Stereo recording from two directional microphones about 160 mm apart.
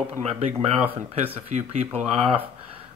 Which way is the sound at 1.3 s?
40° right (ahead or behind).